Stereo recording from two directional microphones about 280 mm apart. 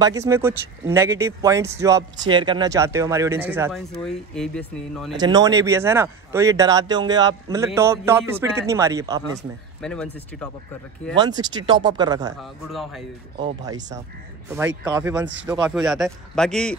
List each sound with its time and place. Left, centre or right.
0.0 s speech: centre
5.1 s speech: centre
9.8 s speech: centre
11.1 s speech: centre
12.4 s speech: centre
15.0 s speech: centre